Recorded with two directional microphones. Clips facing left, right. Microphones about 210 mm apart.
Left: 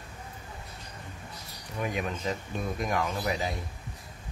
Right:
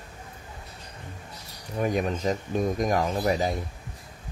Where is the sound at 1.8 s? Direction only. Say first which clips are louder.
Right 6 dB; 40° right (ahead or behind).